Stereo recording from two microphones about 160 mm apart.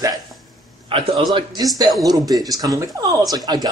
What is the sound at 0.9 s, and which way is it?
Speech, 30° right (ahead or behind).